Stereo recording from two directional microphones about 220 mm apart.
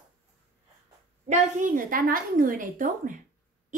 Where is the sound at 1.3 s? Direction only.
35° right (ahead or behind).